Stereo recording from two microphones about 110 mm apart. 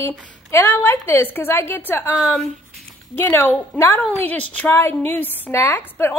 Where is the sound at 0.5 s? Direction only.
25° left (ahead or behind).